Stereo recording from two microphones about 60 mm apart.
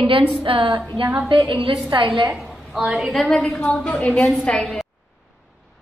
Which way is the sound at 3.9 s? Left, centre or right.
Left.